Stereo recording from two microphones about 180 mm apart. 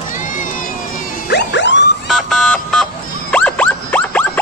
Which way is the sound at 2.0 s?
Centre (ahead or behind).